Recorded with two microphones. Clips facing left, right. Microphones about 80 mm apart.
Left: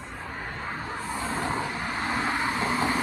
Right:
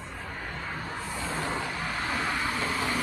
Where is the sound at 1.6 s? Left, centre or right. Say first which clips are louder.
Left 2 dB; left.